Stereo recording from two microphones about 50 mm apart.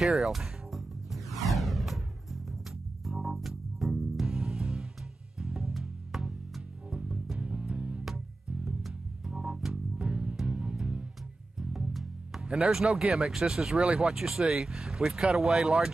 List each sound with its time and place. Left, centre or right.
0.0 s music: centre
6.9 s music: centre
9.2 s music: centre
10.0 s music: right
11.9 s speech: centre